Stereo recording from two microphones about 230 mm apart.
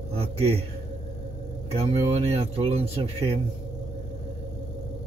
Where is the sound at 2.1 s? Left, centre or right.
Right.